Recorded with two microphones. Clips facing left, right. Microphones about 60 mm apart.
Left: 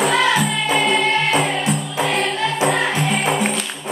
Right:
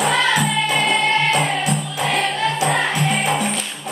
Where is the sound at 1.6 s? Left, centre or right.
Left.